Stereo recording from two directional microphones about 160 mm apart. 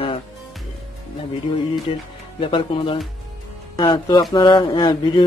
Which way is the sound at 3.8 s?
30° left (ahead or behind).